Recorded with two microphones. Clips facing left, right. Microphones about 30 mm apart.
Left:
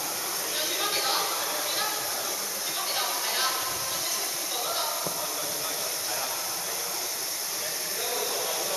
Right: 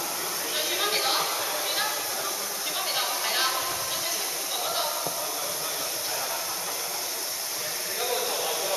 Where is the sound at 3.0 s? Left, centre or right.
Centre.